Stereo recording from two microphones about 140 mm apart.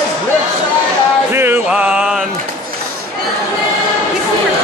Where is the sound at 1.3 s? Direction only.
15° right (ahead or behind).